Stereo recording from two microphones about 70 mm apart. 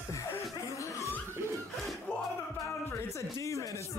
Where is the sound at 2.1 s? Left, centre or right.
Centre.